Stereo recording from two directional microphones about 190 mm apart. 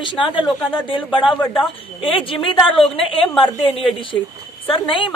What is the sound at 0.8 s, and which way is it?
A woman's voice, 25° left (ahead or behind).